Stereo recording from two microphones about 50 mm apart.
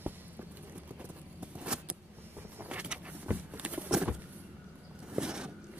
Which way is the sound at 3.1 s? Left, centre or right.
Right.